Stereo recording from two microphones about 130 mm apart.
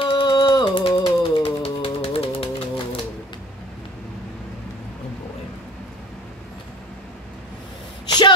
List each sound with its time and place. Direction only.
0.0 s music: 40° left (ahead or behind)